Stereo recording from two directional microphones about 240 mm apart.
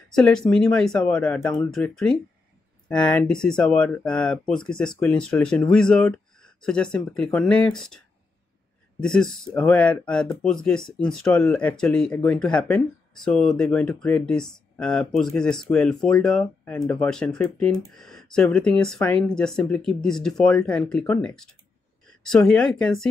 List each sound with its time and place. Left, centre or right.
0.1 s speech: centre
9.0 s speech: centre